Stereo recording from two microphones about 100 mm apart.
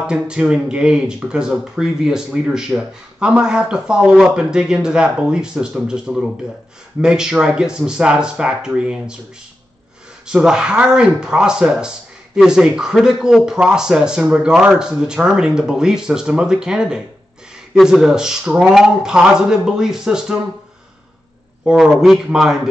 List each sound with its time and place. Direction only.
0.0 s speech: 10° right (ahead or behind)
10.2 s a man's voice: 5° right (ahead or behind)
21.6 s a man's voice: 5° right (ahead or behind)